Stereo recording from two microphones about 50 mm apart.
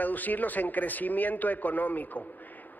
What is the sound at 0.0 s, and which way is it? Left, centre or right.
A man's voice, left.